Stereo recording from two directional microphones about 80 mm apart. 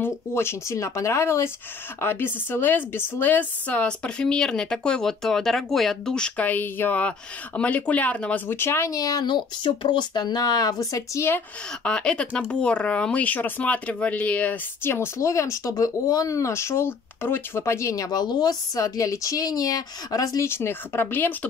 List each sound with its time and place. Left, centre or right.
0.0 s a woman's voice: left; by 6.4 s centre
6.4 s speech: left
8.5 s speech: left
8.9 s speech: left
9.2 s speech: left
11.8 s a woman's voice: centre
14.9 s speech: left
20.4 s speech: left